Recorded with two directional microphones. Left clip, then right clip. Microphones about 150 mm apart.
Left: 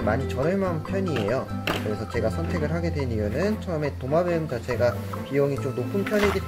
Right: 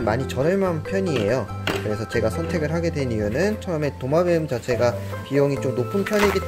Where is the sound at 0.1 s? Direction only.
35° right (ahead or behind).